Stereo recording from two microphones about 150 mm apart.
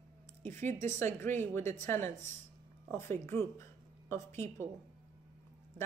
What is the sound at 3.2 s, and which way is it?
A woman's voice, 15° left (ahead or behind).